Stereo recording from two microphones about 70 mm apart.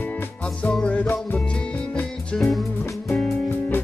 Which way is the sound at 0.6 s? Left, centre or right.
Left.